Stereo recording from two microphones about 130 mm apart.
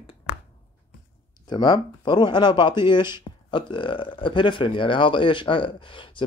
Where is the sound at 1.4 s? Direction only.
35° left (ahead or behind).